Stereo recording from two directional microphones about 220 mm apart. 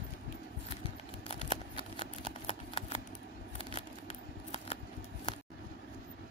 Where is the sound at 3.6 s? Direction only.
25° left (ahead or behind).